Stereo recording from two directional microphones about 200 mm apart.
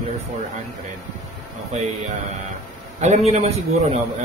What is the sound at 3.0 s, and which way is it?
Speech, 35° right (ahead or behind).